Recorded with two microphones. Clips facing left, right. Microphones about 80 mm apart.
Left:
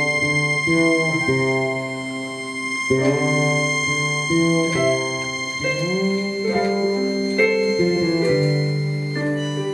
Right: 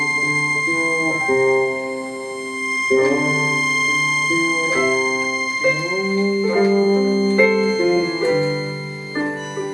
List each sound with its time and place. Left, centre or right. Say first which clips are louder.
0.8 s music: left 1 dB; right
2.9 s music: right 2 dB; right